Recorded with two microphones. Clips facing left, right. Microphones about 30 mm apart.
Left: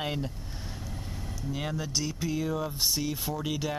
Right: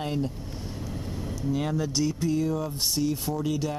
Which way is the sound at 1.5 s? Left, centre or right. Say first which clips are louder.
Right 5 dB; centre.